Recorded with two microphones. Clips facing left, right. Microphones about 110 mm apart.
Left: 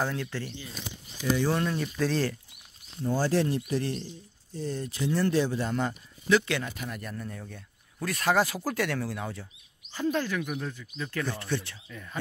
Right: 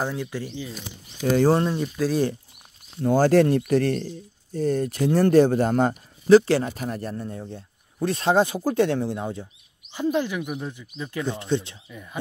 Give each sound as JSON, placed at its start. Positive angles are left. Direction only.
{"t": 0.0, "sound": "speech", "side_deg": -15}
{"t": 2.0, "sound": "speech", "side_deg": -10}
{"t": 3.0, "sound": "a man's voice", "side_deg": -65}